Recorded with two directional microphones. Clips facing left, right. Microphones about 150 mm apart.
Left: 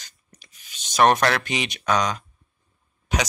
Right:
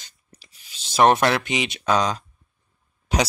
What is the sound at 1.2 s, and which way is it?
Speech, 20° right (ahead or behind).